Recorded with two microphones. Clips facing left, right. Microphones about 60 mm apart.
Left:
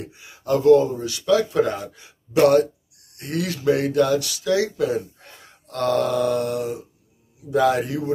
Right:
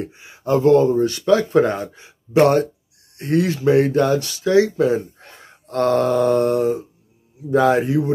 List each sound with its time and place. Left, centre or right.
0.0 s a man's voice: right